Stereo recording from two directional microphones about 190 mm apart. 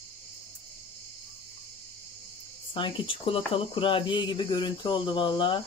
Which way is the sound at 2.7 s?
25° left (ahead or behind).